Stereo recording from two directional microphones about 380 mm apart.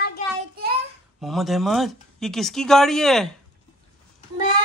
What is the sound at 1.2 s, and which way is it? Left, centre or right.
Speech, centre.